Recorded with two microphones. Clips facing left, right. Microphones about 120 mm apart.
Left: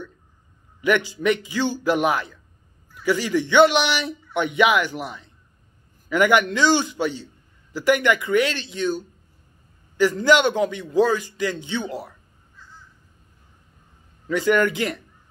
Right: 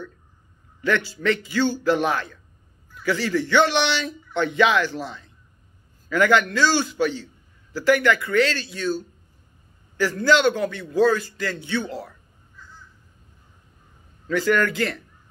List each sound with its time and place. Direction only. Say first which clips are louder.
0.7 s a man's voice: left 3 dB; 15° left (ahead or behind)
14.2 s a man's voice: left 2 dB; 20° left (ahead or behind)